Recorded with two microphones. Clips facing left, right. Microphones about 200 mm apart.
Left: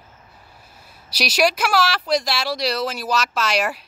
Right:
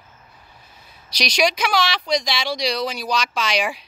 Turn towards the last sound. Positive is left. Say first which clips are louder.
# left 1 dB
turn(degrees=5)  # may be behind; listen again after turning